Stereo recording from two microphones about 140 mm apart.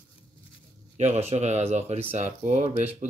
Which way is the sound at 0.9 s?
55° right (ahead or behind).